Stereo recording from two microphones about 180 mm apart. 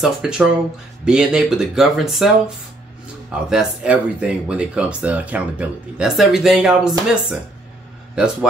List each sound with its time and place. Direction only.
0.0 s speech: centre (ahead or behind)